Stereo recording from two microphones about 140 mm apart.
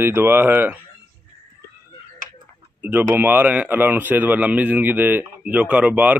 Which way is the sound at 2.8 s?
15° right (ahead or behind).